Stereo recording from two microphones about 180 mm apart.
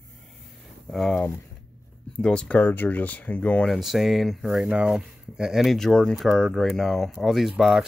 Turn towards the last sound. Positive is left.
turn(degrees=0)  # may be behind; listen again after turning